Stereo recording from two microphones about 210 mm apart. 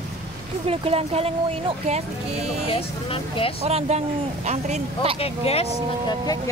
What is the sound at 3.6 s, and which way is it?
Speech, 30° right (ahead or behind).